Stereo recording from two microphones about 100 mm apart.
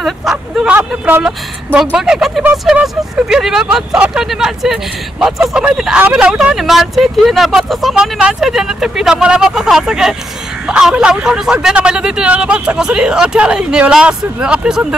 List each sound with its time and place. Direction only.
0.0 s speech: 5° right (ahead or behind)
0.7 s speech: 20° right (ahead or behind)